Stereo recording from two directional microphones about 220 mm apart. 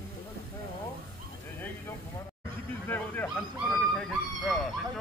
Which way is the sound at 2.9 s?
10° left (ahead or behind).